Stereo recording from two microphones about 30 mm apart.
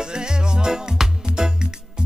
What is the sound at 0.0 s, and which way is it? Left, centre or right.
Music, right.